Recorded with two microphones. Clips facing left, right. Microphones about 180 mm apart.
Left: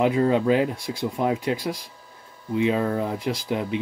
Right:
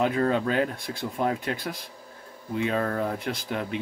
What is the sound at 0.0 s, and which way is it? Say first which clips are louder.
Speech: left 4 dB; 15° left (ahead or behind).